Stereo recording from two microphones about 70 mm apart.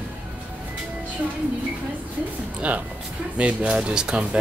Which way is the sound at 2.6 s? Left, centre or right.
Centre.